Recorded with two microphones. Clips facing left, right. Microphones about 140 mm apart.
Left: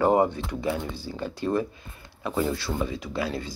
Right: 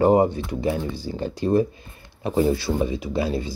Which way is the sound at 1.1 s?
20° right (ahead or behind).